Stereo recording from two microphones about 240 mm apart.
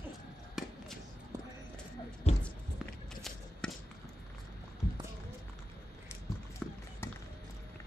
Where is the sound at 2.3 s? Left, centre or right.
Left.